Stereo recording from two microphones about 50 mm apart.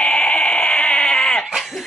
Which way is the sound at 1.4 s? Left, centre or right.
Centre.